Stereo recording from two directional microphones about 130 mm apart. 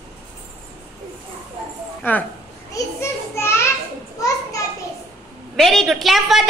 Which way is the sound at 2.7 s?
20° left (ahead or behind).